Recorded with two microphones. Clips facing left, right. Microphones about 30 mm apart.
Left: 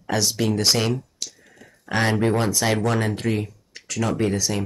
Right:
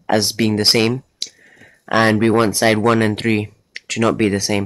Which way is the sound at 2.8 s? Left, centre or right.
Right.